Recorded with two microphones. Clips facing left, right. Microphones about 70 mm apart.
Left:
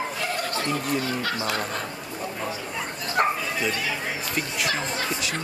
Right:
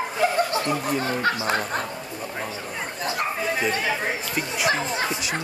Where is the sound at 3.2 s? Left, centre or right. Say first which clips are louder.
Left 6 dB; left.